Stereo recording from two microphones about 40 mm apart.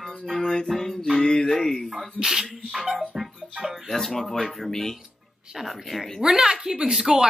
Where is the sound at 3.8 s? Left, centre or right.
Centre.